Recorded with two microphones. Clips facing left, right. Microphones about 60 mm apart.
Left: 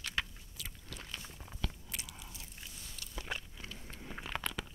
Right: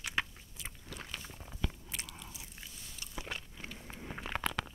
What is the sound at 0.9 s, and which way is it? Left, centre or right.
Walk, centre.